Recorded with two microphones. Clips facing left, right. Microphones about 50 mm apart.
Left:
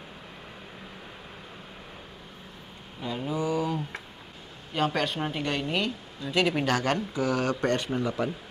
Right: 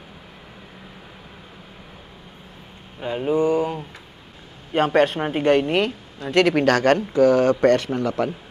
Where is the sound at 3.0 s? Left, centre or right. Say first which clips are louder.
Right 9 dB; right.